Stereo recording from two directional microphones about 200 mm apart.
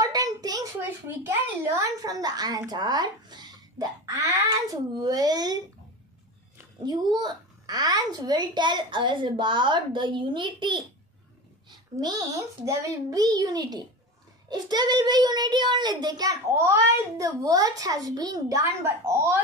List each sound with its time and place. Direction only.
0.0 s a sound: 20° right (ahead or behind)
1.8 s a child's voice: 15° right (ahead or behind)
6.6 s a child's voice: 20° right (ahead or behind)